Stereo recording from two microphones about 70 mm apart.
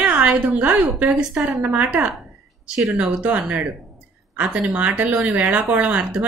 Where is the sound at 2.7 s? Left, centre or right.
Centre.